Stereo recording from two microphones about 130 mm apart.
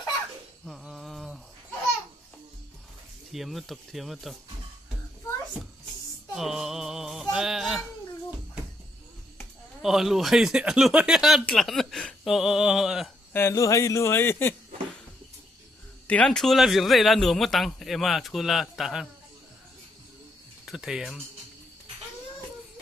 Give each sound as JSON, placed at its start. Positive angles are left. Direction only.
{"t": 0.7, "sound": "a sound", "side_deg": 0}
{"t": 3.3, "sound": "a man's voice", "side_deg": 0}
{"t": 6.3, "sound": "a man's voice", "side_deg": -5}
{"t": 9.8, "sound": "a man's voice", "side_deg": -5}
{"t": 13.3, "sound": "speech", "side_deg": 20}
{"t": 16.1, "sound": "a man's voice", "side_deg": 10}
{"t": 20.6, "sound": "speech", "side_deg": -5}